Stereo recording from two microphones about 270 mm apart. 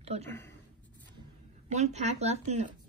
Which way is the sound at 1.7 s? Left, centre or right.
Right.